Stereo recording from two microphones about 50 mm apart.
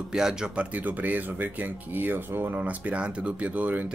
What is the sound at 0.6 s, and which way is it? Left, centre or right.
Speech, right.